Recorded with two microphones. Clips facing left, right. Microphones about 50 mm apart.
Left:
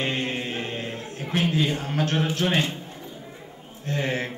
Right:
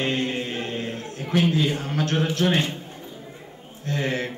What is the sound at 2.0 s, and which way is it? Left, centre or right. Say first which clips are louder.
Mantra: even; left.